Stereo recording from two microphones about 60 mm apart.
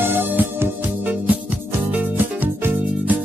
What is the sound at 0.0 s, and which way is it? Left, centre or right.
Music, right.